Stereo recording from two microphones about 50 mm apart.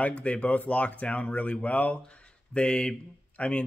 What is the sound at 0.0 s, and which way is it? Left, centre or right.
Speech, left.